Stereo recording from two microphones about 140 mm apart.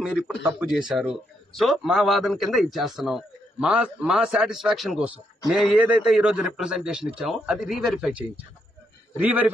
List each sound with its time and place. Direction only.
0.0 s a man's voice: 5° right (ahead or behind)
9.2 s speech: 10° right (ahead or behind)